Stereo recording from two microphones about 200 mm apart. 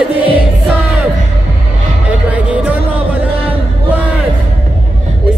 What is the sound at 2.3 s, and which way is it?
Music, 5° right (ahead or behind).